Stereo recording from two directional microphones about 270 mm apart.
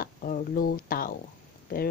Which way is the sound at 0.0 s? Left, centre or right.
Left.